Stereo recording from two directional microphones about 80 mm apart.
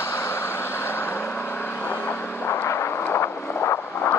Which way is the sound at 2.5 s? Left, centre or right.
Left.